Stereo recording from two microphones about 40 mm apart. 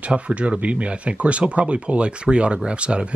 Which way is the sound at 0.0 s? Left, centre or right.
Right.